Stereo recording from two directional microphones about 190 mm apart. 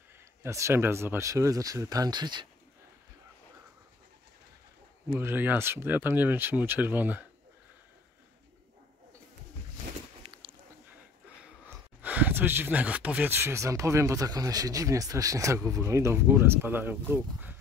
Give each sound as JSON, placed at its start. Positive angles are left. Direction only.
{"t": 0.4, "sound": "speech", "side_deg": -15}
{"t": 5.1, "sound": "speech", "side_deg": -10}
{"t": 10.2, "sound": "a sound", "side_deg": -30}
{"t": 11.6, "sound": "speech", "side_deg": -10}